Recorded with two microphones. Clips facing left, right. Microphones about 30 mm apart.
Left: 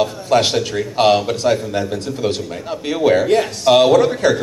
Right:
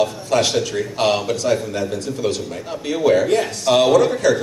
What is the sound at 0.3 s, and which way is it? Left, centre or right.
A man's voice, left.